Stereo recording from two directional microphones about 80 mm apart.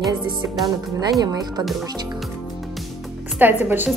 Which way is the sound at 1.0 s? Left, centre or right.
Right.